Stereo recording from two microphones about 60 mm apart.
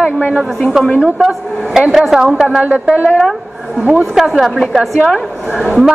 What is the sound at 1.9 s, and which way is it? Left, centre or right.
Speech, centre.